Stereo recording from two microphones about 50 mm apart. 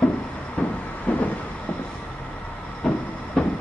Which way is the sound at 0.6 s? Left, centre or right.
Left.